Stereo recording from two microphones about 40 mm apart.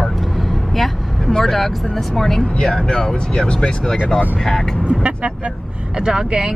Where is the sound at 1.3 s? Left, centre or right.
Centre.